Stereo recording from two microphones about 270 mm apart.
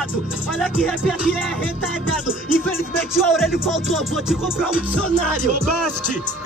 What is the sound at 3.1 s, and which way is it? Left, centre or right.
Music, centre.